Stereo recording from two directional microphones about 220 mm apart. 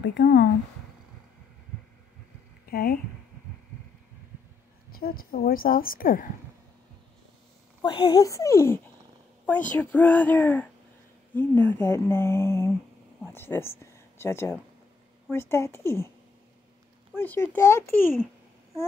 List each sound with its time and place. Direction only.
0.0 s speech: 50° left (ahead or behind)
2.6 s speech: 40° left (ahead or behind)
4.9 s a woman's voice: 40° left (ahead or behind)
7.8 s speech: 20° left (ahead or behind)
17.2 s speech: 10° left (ahead or behind)